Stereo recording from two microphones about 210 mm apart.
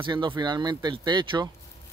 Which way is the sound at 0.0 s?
20° right (ahead or behind).